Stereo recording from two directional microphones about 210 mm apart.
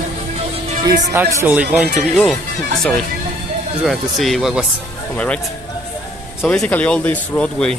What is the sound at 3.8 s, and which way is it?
Speech, centre (ahead or behind).